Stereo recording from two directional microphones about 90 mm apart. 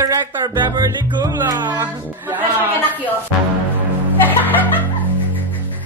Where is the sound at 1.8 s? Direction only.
25° right (ahead or behind).